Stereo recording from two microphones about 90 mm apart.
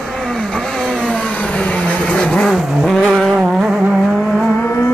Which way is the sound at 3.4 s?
10° right (ahead or behind).